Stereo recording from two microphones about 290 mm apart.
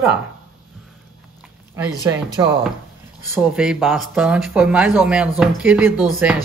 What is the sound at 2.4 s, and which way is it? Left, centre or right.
Speech, centre.